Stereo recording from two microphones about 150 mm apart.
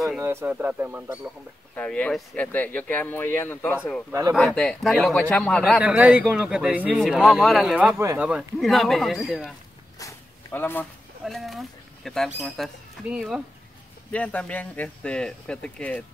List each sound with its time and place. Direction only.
0.2 s speech: 15° right (ahead or behind)
1.8 s speech: 10° left (ahead or behind)
5.8 s speech: 5° right (ahead or behind)
8.0 s speech: 20° right (ahead or behind)
8.5 s speech: centre (ahead or behind)
9.9 s a sound: 15° left (ahead or behind)
11.2 s speech: centre (ahead or behind)
14.1 s speech: 10° left (ahead or behind)